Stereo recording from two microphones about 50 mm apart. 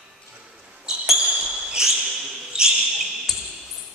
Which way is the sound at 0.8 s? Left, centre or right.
Centre.